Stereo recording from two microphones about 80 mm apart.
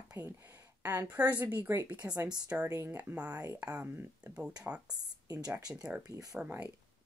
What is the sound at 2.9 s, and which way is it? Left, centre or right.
Speech, right.